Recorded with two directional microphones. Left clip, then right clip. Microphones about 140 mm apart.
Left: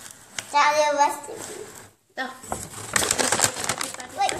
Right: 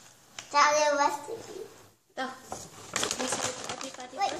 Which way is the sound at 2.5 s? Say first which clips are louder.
Left 9 dB; 65° left (ahead or behind).